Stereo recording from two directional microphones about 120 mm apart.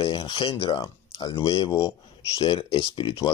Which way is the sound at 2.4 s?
45° left (ahead or behind).